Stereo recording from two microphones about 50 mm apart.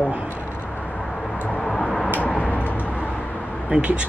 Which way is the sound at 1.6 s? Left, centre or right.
Centre.